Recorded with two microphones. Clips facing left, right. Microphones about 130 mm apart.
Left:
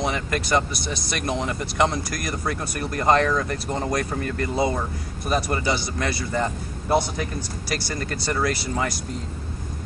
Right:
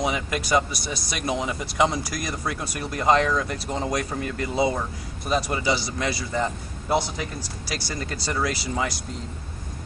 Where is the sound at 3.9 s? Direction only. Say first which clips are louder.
Left 2 dB; 15° right (ahead or behind).